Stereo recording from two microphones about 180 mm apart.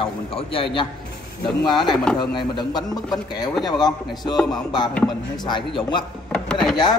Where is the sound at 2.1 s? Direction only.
25° left (ahead or behind).